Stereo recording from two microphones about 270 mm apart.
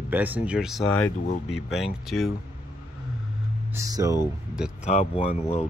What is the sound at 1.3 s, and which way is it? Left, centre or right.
Speech, left.